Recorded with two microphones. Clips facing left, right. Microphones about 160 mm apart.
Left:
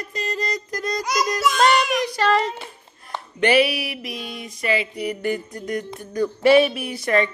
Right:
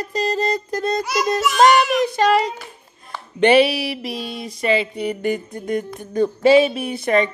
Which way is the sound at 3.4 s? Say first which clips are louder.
Right 4 dB; 30° right (ahead or behind).